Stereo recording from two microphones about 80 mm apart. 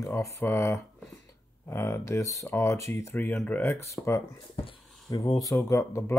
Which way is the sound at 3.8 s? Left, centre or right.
Left.